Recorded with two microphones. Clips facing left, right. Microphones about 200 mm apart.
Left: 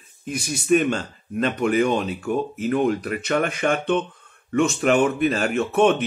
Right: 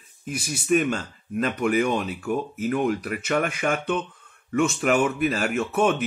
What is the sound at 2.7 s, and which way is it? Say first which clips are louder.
Speech: left 3 dB; 25° left (ahead or behind).